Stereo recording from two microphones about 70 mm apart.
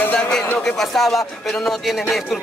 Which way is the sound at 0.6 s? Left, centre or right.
Centre.